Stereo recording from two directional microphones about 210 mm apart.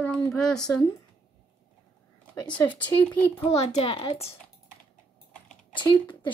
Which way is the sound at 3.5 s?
30° left (ahead or behind).